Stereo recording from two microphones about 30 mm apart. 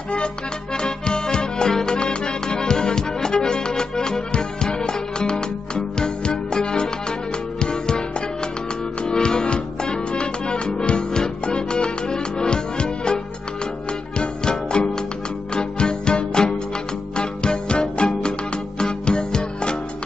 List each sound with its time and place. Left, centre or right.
0.7 s music: left
9.0 s music: left